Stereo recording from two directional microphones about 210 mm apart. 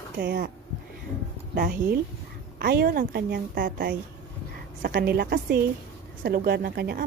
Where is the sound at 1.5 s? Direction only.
45° right (ahead or behind).